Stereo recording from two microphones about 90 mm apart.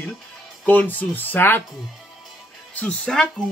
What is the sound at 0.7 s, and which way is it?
Speech, 20° left (ahead or behind).